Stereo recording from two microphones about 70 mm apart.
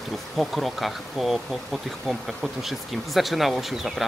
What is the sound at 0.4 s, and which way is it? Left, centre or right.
Speech, centre.